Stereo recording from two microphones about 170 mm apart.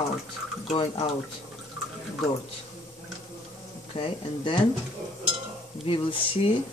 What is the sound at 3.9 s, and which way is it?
Speech, 30° left (ahead or behind).